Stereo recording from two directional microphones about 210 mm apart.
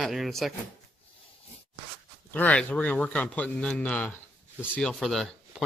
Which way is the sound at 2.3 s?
5° left (ahead or behind).